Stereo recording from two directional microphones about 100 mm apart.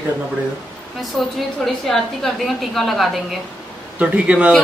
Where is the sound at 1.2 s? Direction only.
Centre (ahead or behind).